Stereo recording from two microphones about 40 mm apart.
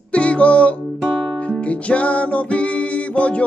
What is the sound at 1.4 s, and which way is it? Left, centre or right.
Music, left.